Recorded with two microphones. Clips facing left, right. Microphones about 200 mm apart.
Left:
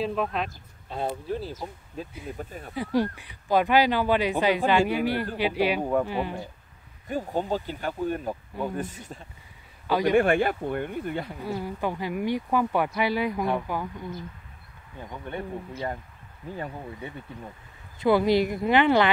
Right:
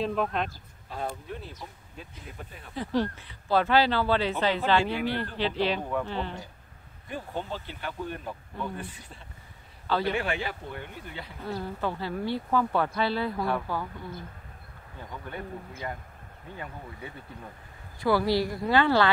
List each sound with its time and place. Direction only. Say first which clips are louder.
0.0 s speech: left 1 dB; centre (ahead or behind)
0.8 s speech: left 5 dB; 25° left (ahead or behind); by 2.5 s 40° left (ahead or behind)
2.7 s speech: left 2 dB; 10° left (ahead or behind)
7.1 s speech: left 7 dB; 40° left (ahead or behind)
9.8 s a man's voice: left 4 dB; 15° left (ahead or behind)
10.1 s speech: left 10 dB; 50° left (ahead or behind)
11.4 s speech: even; 10° left (ahead or behind)
15.0 s speech: left 4 dB; 25° left (ahead or behind)
17.9 s speech: left 4 dB; 20° left (ahead or behind)